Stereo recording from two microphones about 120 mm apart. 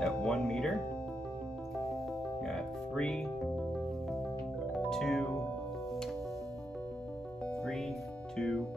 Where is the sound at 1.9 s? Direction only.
Centre (ahead or behind).